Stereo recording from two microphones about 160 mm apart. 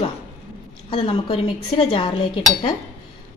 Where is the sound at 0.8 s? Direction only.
30° left (ahead or behind).